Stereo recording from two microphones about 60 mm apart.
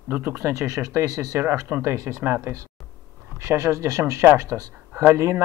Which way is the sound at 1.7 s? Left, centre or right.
Right.